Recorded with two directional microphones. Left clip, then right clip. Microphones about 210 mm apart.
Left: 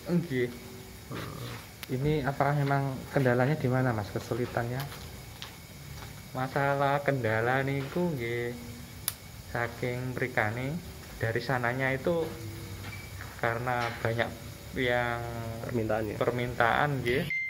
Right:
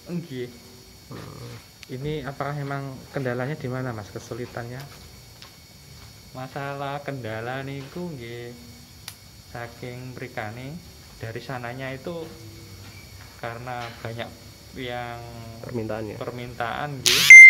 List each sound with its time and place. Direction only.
0.1 s speech: 10° left (ahead or behind)
1.9 s speech: 10° left (ahead or behind)
6.3 s speech: 10° left (ahead or behind)
13.4 s speech: 5° left (ahead or behind)
15.6 s speech: 40° right (ahead or behind)
16.2 s speech: 10° left (ahead or behind)